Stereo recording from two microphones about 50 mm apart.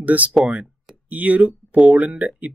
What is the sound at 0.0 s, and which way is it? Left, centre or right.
Speech, right.